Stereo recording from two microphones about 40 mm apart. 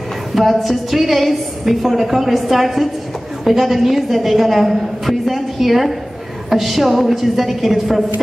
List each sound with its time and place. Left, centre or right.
0.3 s a woman's voice: centre